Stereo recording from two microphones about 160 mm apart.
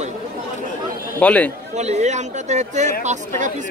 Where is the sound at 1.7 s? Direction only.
45° right (ahead or behind).